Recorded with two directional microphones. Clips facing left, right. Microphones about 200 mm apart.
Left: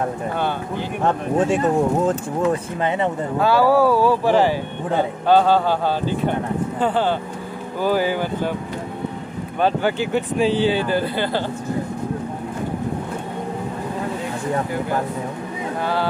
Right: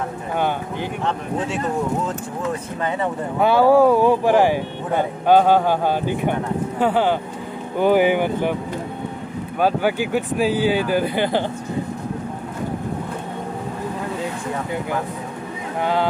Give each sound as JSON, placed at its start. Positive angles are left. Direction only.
{"t": 3.3, "sound": "speech", "side_deg": -20}
{"t": 9.6, "sound": "speech", "side_deg": -10}
{"t": 15.8, "sound": "speech", "side_deg": -20}